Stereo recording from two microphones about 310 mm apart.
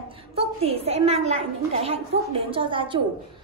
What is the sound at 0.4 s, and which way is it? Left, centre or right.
A child's voice, centre.